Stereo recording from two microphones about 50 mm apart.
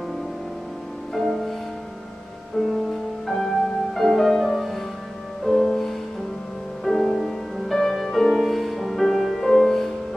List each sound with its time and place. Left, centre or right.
1.1 s music: centre
2.7 s music: centre